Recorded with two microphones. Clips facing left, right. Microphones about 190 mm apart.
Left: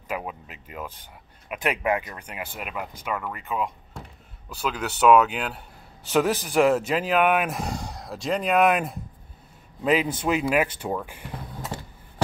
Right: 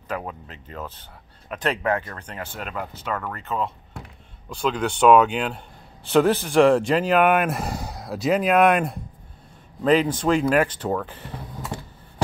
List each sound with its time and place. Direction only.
0.1 s speech: 10° left (ahead or behind)